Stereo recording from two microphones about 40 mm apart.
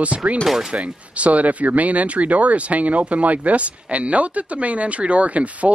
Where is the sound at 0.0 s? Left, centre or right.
Right.